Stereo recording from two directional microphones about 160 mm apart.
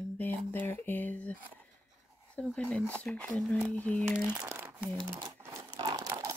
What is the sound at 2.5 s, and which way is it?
Speech, 10° left (ahead or behind).